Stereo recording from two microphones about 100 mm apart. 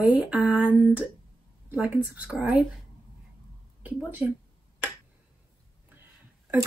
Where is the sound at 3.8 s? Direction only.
20° right (ahead or behind).